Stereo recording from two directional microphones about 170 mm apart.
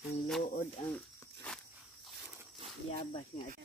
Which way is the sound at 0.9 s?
5° left (ahead or behind).